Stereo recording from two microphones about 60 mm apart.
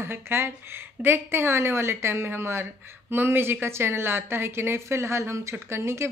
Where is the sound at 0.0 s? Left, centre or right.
Right.